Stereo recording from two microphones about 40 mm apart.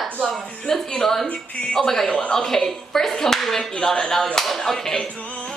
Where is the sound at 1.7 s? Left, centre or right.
Centre.